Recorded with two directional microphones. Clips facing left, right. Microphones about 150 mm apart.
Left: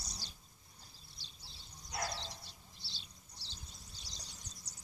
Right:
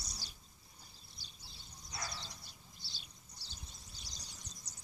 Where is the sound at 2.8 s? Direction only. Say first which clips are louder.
Left 1 dB; 30° left (ahead or behind).